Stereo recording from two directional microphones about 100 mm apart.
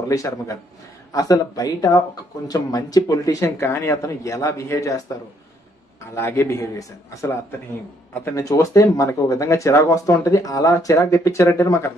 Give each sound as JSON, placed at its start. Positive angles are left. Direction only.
{"t": 0.1, "sound": "speech", "side_deg": 35}
{"t": 6.1, "sound": "a man's voice", "side_deg": 25}